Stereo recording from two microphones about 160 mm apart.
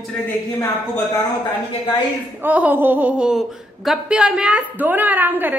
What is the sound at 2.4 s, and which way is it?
Speech, 10° right (ahead or behind).